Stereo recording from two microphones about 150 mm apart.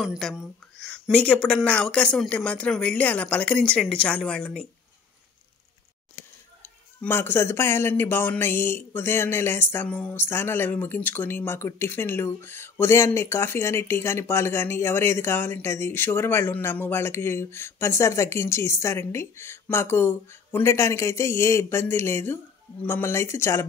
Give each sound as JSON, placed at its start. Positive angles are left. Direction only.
{"t": 0.0, "sound": "speech", "side_deg": 0}
{"t": 6.6, "sound": "speech", "side_deg": 15}